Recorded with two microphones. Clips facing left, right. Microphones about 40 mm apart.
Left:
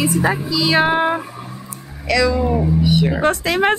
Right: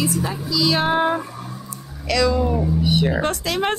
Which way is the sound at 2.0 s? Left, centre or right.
Centre.